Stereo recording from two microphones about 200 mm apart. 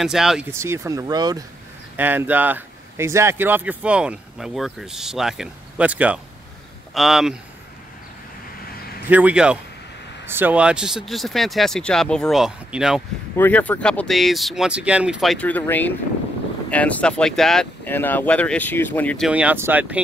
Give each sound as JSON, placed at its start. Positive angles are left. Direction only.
{"t": 0.0, "sound": "speech", "side_deg": 0}
{"t": 0.5, "sound": "speech", "side_deg": -15}
{"t": 2.0, "sound": "speech", "side_deg": -10}
{"t": 9.0, "sound": "speech", "side_deg": -10}
{"t": 13.4, "sound": "speech", "side_deg": 5}